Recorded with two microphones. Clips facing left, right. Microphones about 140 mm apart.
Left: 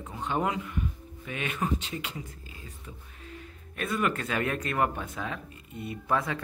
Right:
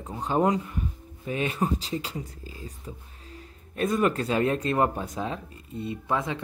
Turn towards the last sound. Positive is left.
turn(degrees=-20)  # may be behind; listen again after turning